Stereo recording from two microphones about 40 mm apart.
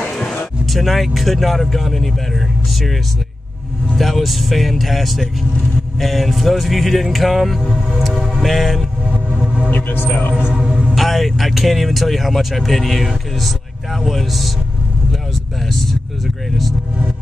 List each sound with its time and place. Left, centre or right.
0.2 s a sound: left
0.7 s speech: centre
4.0 s speech: centre
9.7 s speech: left
10.5 s music: right
11.0 s speech: centre